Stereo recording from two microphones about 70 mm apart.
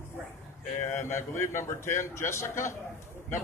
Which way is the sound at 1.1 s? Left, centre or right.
Left.